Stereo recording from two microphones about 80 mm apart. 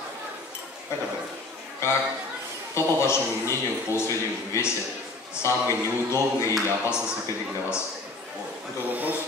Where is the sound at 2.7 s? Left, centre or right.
Left.